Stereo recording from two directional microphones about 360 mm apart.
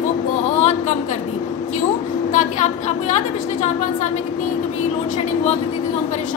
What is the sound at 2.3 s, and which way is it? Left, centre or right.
Speech, centre.